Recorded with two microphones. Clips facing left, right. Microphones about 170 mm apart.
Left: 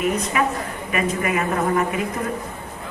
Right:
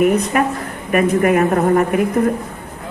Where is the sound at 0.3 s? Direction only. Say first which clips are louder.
Right 4 dB; 50° right (ahead or behind).